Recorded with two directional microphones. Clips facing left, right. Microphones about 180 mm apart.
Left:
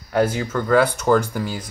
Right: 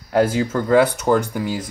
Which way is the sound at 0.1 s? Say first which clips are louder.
Right 2 dB; 30° right (ahead or behind).